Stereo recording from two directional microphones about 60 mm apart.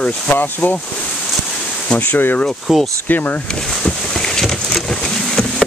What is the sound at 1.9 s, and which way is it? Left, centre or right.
Speech, left.